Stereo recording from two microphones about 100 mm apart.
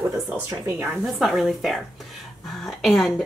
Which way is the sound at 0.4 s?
25° right (ahead or behind).